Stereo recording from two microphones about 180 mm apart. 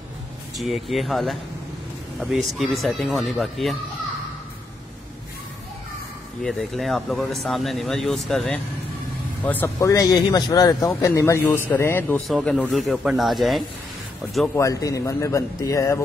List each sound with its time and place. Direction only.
0.6 s speech: centre (ahead or behind)
6.4 s speech: centre (ahead or behind)
12.3 s speech: centre (ahead or behind)
14.6 s speech: 20° left (ahead or behind)